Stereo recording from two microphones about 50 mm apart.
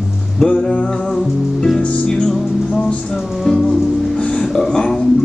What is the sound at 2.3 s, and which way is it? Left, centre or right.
Music, centre.